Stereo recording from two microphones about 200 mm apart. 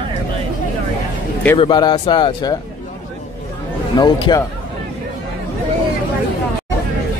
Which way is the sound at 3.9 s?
20° left (ahead or behind).